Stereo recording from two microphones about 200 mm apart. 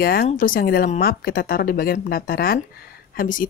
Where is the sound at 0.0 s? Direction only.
50° left (ahead or behind).